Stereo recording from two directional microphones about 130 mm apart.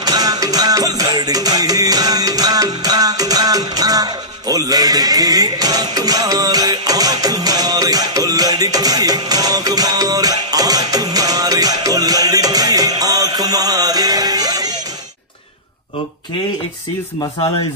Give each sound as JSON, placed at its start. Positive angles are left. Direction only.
{"t": 0.0, "sound": "music", "side_deg": -30}